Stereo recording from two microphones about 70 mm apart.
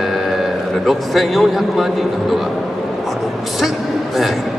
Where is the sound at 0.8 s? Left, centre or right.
Centre.